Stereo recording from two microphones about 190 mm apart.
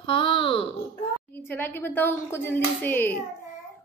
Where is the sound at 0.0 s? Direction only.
25° left (ahead or behind).